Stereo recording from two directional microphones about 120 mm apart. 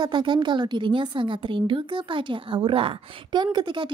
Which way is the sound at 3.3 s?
40° right (ahead or behind).